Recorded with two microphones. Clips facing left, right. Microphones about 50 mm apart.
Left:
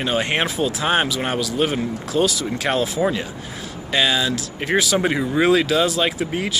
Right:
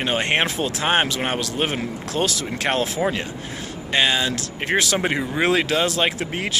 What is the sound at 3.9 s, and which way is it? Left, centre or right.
Speech, right.